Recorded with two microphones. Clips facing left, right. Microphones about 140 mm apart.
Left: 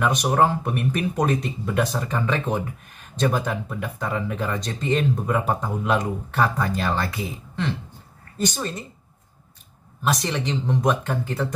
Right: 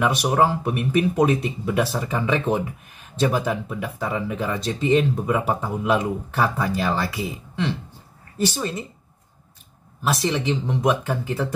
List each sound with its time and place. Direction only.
0.0 s speech: 5° right (ahead or behind)
8.4 s speech: 5° right (ahead or behind)
10.0 s speech: 5° right (ahead or behind)